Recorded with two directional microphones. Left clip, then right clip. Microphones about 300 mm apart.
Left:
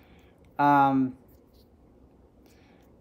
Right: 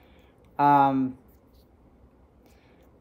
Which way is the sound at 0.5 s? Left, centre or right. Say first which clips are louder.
Right 1 dB; centre.